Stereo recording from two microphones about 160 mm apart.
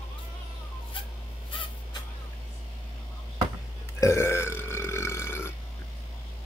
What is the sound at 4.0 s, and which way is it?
Burping, 15° left (ahead or behind).